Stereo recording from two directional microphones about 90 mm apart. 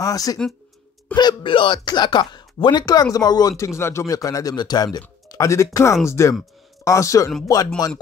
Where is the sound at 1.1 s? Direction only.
55° left (ahead or behind).